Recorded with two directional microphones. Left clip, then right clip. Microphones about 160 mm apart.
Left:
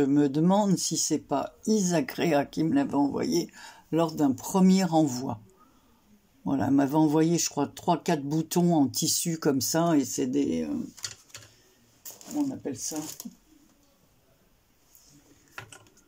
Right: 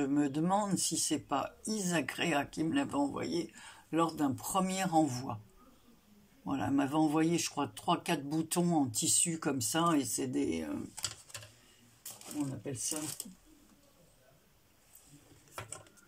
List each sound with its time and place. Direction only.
0.0 s speech: 30° left (ahead or behind)
6.4 s speech: 30° left (ahead or behind)